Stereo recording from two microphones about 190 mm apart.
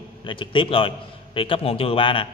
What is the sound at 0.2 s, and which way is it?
A man's voice, 25° left (ahead or behind).